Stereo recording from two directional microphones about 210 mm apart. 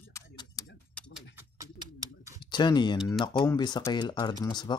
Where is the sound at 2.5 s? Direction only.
20° left (ahead or behind).